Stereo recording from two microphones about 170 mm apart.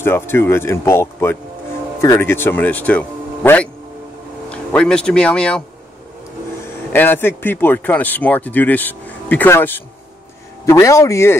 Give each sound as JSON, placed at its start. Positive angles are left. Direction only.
{"t": 0.0, "sound": "speech", "side_deg": 15}
{"t": 6.9, "sound": "speech", "side_deg": 15}